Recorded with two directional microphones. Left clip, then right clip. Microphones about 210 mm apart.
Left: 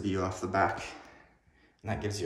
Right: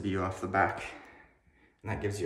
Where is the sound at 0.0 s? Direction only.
5° left (ahead or behind).